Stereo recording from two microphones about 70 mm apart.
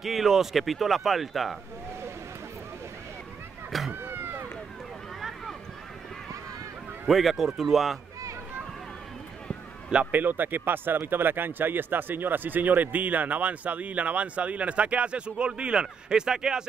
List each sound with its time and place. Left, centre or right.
0.0 s speech: centre
3.9 s a sound: right
7.1 s speech: centre
9.8 s a man's voice: centre
10.2 s speech: right; by 16.6 s centre